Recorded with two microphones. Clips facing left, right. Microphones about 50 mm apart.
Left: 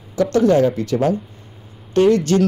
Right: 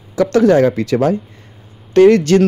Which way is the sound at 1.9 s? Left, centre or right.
Right.